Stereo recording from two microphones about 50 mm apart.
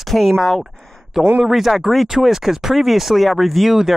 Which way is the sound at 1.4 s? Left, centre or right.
Centre.